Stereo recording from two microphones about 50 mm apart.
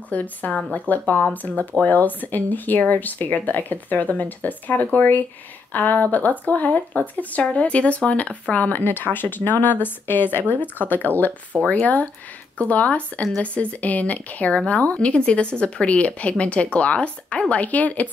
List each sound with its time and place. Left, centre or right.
0.1 s a woman's voice: left